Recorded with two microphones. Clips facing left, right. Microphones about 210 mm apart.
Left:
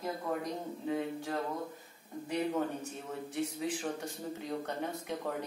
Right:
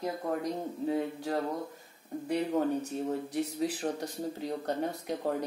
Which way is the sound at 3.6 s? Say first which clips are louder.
Right 4 dB; 35° right (ahead or behind).